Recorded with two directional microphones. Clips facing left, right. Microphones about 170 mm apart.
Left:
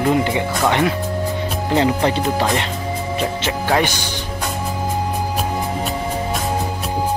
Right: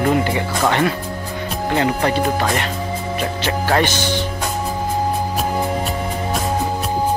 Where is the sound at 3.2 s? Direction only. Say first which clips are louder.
Right 1 dB; 15° left (ahead or behind).